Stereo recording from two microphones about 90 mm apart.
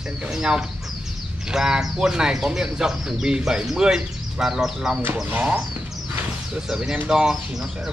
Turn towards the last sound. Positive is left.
turn(degrees=-5)  # may be behind; listen again after turning